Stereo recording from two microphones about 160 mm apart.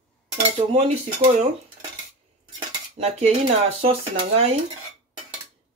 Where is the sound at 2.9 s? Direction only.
45° right (ahead or behind).